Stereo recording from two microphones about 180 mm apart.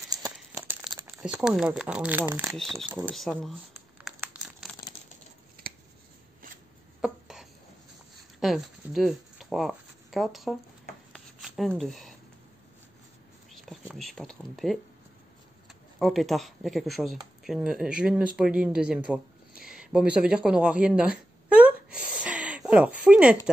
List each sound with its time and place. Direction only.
0.1 s a sound: 15° right (ahead or behind)
1.1 s speech: 5° right (ahead or behind)
2.5 s speech: centre (ahead or behind)
4.2 s crumpling: 5° right (ahead or behind)
7.0 s a sound: centre (ahead or behind)
8.4 s speech: centre (ahead or behind)
11.1 s rub: centre (ahead or behind)
11.8 s speech: centre (ahead or behind)
13.5 s speech: centre (ahead or behind)
16.0 s speech: centre (ahead or behind)
19.0 s a sound: 5° right (ahead or behind)